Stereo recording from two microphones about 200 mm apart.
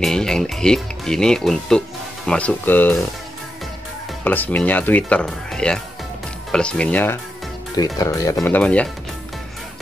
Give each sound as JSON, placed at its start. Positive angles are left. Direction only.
{"t": 0.0, "sound": "speech", "side_deg": 5}
{"t": 4.2, "sound": "speech", "side_deg": 10}